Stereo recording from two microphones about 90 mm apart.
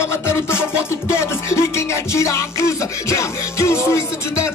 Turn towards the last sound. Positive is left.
turn(degrees=35)  # may be behind; listen again after turning